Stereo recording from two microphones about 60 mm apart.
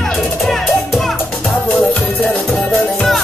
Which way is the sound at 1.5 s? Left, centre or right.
Left.